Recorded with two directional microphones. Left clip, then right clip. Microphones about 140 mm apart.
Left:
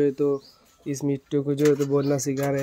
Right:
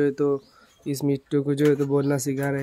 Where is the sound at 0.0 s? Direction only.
25° right (ahead or behind).